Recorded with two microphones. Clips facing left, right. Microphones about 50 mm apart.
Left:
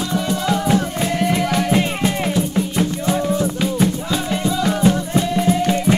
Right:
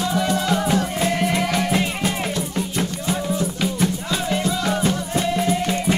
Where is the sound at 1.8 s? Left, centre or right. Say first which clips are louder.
Left 3 dB; centre.